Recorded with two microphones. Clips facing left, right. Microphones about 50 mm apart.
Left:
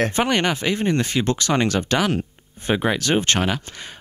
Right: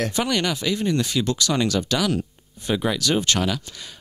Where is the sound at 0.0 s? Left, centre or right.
Left.